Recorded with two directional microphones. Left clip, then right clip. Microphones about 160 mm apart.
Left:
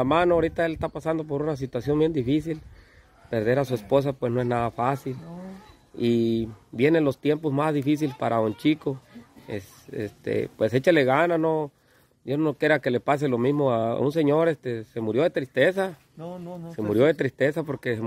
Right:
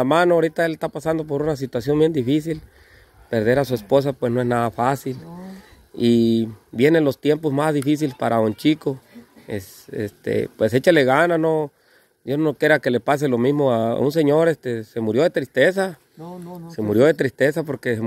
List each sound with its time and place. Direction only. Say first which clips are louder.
0.0 s speech: right 5 dB; 30° right (ahead or behind)